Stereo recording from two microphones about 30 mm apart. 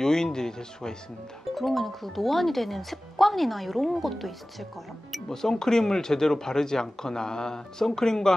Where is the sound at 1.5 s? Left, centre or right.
Centre.